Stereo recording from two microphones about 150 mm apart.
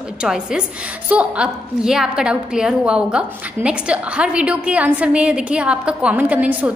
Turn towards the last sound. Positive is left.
turn(degrees=-10)  # may be behind; listen again after turning